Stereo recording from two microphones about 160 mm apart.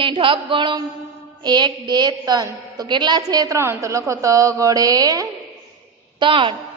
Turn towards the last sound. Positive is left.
turn(degrees=-30)  # may be behind; listen again after turning